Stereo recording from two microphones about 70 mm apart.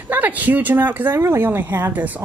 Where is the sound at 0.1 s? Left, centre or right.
Right.